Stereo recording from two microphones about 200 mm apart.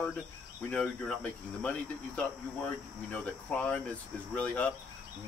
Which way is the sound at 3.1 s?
5° left (ahead or behind).